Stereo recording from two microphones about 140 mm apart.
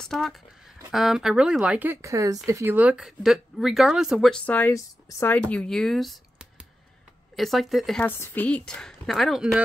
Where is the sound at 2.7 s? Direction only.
5° right (ahead or behind).